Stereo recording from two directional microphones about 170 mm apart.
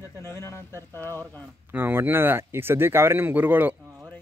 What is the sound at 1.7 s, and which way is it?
Speech, 10° right (ahead or behind).